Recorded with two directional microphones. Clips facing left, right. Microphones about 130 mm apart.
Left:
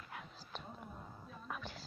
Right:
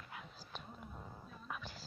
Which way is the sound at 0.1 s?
5° right (ahead or behind).